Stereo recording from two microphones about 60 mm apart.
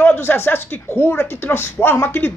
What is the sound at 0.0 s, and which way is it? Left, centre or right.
A woman's voice, left.